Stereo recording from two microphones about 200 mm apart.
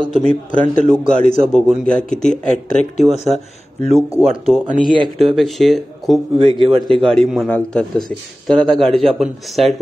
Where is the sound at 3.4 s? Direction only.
30° right (ahead or behind).